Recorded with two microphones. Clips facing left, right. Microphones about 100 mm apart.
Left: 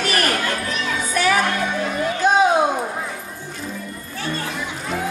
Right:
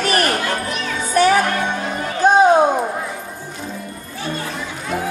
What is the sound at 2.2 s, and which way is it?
Children playing, 40° right (ahead or behind).